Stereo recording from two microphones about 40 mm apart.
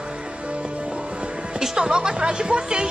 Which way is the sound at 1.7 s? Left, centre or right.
Centre.